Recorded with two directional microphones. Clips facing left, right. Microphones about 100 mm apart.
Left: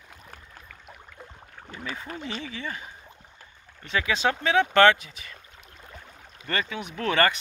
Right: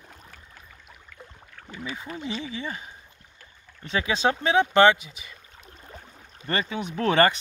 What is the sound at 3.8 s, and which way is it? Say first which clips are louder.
Speech: right 1 dB; 25° right (ahead or behind).